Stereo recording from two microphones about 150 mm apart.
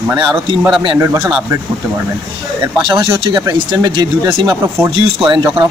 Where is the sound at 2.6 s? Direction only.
25° right (ahead or behind).